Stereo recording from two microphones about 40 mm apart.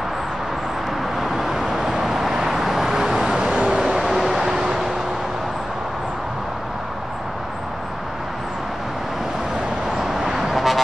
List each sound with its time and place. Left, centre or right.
1.2 s vehicle: centre
3.8 s a sound: centre
9.9 s vehicle: centre